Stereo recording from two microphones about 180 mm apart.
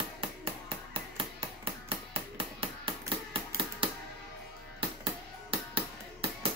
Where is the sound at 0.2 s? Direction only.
30° right (ahead or behind).